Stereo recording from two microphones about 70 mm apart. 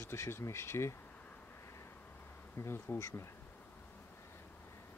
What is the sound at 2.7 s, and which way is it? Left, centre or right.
Speech, left.